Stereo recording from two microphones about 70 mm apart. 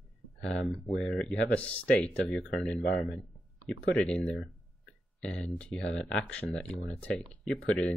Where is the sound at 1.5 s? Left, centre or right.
Centre.